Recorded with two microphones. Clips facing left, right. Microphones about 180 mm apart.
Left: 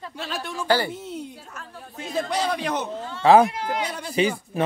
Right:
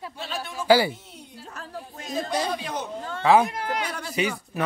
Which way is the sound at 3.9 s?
20° left (ahead or behind).